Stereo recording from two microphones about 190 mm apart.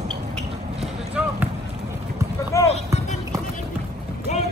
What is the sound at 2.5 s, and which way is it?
Music, 15° left (ahead or behind).